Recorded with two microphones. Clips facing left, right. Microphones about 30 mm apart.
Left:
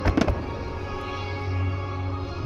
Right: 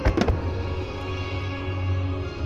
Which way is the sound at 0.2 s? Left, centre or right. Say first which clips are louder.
Left 1 dB; centre.